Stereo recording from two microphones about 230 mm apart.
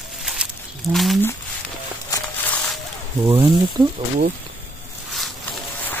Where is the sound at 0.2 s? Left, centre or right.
Centre.